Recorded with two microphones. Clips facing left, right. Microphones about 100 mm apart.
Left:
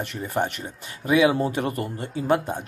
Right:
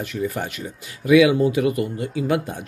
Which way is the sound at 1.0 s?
40° left (ahead or behind).